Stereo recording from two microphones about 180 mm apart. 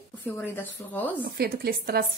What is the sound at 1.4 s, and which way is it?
Speech, 60° right (ahead or behind).